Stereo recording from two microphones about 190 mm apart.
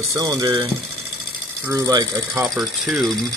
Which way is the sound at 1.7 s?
20° right (ahead or behind).